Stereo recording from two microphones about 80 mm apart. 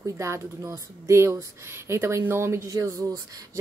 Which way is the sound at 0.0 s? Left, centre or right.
Right.